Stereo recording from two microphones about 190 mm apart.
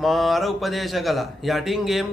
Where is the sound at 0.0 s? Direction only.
Centre (ahead or behind).